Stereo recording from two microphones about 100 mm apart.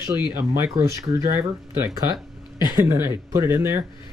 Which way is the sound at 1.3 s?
35° right (ahead or behind).